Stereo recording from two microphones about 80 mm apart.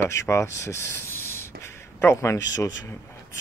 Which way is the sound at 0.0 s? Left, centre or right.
Left.